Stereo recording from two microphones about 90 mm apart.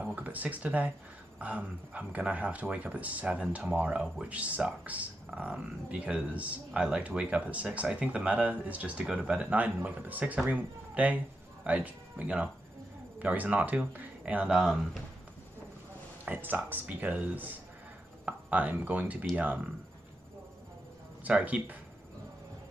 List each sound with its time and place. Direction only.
0.0 s speech: 15° right (ahead or behind)
16.3 s speech: 20° right (ahead or behind)
21.2 s speech: 15° right (ahead or behind)